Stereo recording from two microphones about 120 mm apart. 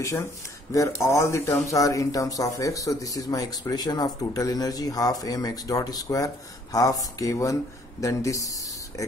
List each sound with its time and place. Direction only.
0.7 s speech: 25° left (ahead or behind)